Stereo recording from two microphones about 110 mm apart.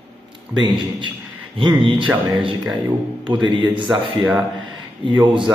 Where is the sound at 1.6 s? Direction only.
45° right (ahead or behind).